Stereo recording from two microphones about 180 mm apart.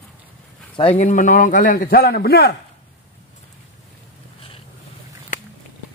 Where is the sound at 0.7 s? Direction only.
35° left (ahead or behind); by 2.5 s 60° left (ahead or behind).